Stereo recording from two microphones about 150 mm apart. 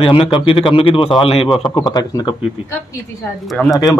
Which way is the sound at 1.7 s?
25° left (ahead or behind).